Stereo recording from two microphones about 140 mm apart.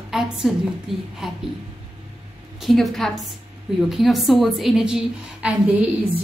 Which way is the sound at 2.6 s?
Centre (ahead or behind).